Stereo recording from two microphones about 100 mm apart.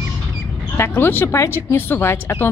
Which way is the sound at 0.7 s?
20° left (ahead or behind).